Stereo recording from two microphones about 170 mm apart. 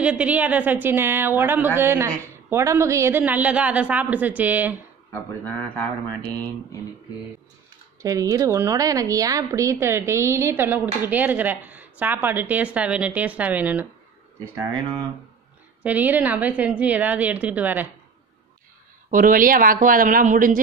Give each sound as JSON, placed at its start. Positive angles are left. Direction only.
{"t": 0.0, "sound": "a man's voice", "side_deg": -5}
{"t": 5.1, "sound": "a man's voice", "side_deg": 10}
{"t": 8.0, "sound": "a man's voice", "side_deg": -20}
{"t": 15.8, "sound": "a man's voice", "side_deg": -10}
{"t": 19.0, "sound": "speech", "side_deg": -55}